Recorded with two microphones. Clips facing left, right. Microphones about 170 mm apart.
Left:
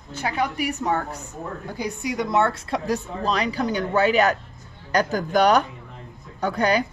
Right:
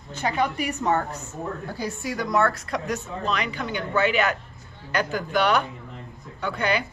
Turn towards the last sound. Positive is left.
turn(degrees=40)  # may be behind; listen again after turning